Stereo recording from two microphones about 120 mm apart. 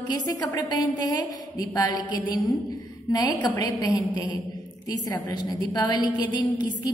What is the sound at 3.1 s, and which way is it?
A woman's voice, 35° left (ahead or behind).